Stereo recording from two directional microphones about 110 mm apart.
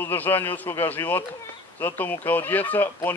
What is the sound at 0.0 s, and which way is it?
Speech, 20° left (ahead or behind).